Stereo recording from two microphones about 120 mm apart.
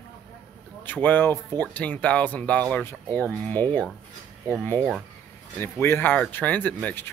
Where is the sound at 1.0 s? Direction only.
15° left (ahead or behind).